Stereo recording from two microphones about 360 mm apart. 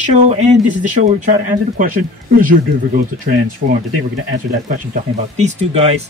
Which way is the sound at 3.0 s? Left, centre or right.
Right.